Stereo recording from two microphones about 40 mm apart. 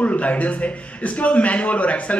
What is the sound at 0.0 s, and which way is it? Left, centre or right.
A man's voice, left.